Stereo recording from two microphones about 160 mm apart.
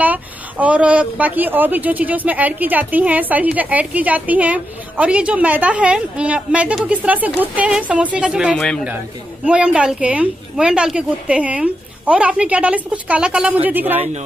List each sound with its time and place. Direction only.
0.0 s speech: 10° right (ahead or behind)
8.5 s speech: 5° left (ahead or behind)
8.8 s speech: 5° right (ahead or behind)